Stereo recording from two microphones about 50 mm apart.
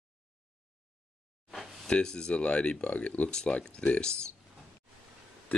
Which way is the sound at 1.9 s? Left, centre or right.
Centre.